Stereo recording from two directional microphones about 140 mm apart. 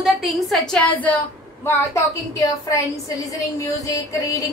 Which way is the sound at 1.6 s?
20° left (ahead or behind).